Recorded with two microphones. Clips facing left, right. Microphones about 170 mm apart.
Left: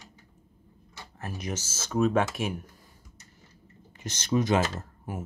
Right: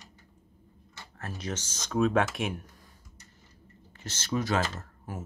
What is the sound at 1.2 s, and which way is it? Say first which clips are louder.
Speech: left 1 dB; 10° left (ahead or behind).